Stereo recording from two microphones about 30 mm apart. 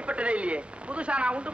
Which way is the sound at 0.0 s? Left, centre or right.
Right.